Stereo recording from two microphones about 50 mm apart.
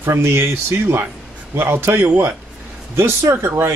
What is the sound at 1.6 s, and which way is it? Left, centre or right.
Speech, right.